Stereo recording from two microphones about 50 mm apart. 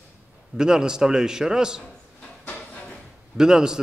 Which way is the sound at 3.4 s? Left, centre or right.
Centre.